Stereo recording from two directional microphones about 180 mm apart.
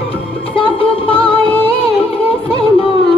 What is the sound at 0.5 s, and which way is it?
Music, 30° left (ahead or behind).